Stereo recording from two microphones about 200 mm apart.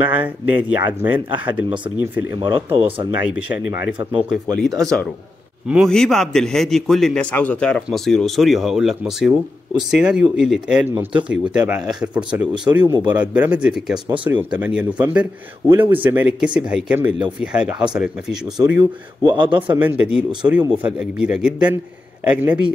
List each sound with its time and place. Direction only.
0.0 s speech: 10° right (ahead or behind)
2.3 s speech: 25° right (ahead or behind)
3.2 s speech: 10° right (ahead or behind)
4.6 s a man's voice: centre (ahead or behind)
13.9 s speech: 20° right (ahead or behind)
14.2 s a man's voice: 5° right (ahead or behind)
18.8 s speech: 25° right (ahead or behind)
19.7 s a man's voice: 10° right (ahead or behind)